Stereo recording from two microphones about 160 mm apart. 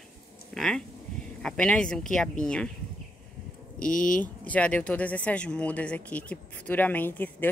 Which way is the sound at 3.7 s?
60° left (ahead or behind).